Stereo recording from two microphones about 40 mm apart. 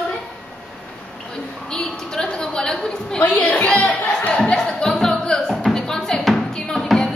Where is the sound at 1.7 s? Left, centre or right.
Centre.